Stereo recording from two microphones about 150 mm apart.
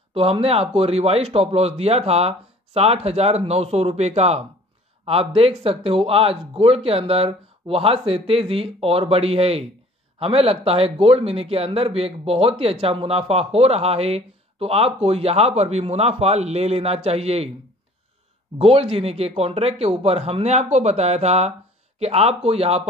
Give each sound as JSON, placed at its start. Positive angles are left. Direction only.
{"t": 0.1, "sound": "speech", "side_deg": -40}
{"t": 18.6, "sound": "speech", "side_deg": -40}